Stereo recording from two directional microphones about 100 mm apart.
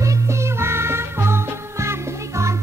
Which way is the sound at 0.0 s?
30° right (ahead or behind).